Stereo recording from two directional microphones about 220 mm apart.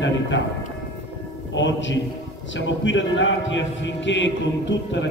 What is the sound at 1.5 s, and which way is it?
Speech, 55° left (ahead or behind).